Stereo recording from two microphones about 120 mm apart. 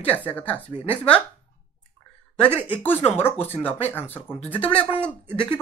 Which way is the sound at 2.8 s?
15° left (ahead or behind).